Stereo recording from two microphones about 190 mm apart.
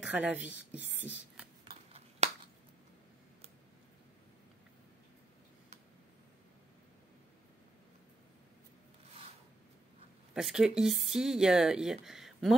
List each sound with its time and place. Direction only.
0.0 s a woman's voice: 10° right (ahead or behind)
1.6 s shuffling cards: 30° right (ahead or behind)
10.3 s speech: 5° right (ahead or behind)